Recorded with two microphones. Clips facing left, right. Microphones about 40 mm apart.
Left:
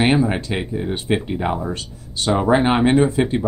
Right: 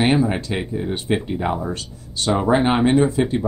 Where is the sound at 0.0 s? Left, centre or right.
Centre.